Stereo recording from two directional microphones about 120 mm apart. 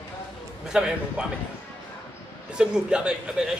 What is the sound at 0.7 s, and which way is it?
Speech, 5° right (ahead or behind).